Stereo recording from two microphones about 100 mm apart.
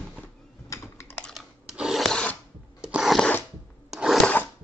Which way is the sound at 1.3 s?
5° right (ahead or behind).